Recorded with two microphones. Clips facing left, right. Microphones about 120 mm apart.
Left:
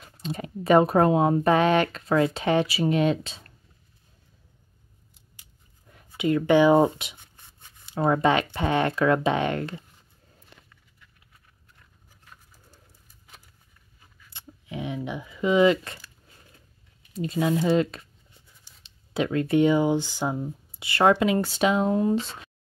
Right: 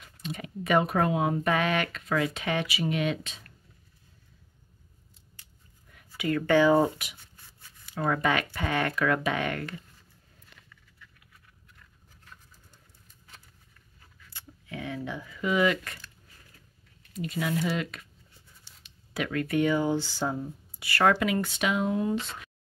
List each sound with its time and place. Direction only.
0.0 s speech: 35° left (ahead or behind)
5.9 s speech: 25° left (ahead or behind)
14.3 s speech: 20° left (ahead or behind)
16.3 s a sound: 20° left (ahead or behind)
17.1 s speech: 30° left (ahead or behind)
18.3 s writing: 15° left (ahead or behind)
18.8 s speech: 25° left (ahead or behind)